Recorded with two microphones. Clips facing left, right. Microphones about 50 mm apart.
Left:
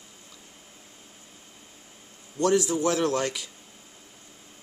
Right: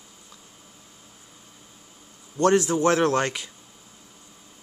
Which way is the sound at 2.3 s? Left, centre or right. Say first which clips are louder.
Right 3 dB; right.